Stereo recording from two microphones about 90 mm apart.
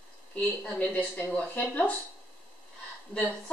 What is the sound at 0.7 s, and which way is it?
Speech, 15° left (ahead or behind).